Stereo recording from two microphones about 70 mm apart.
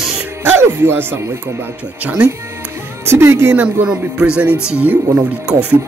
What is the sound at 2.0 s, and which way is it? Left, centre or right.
Speech, centre.